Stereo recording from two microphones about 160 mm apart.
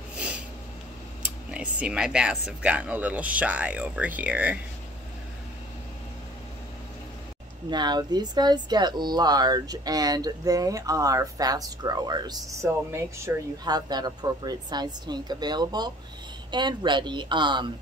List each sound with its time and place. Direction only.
1.5 s speech: 5° right (ahead or behind)
7.7 s speech: 25° right (ahead or behind)